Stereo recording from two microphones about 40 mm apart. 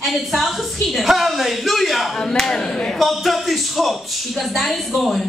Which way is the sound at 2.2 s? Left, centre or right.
Centre.